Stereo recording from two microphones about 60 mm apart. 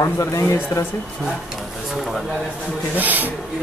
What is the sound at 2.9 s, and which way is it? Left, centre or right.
Speech, right.